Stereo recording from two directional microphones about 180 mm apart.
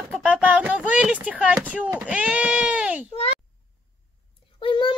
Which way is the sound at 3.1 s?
35° left (ahead or behind).